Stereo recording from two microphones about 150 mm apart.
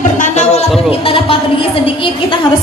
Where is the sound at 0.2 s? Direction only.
50° left (ahead or behind).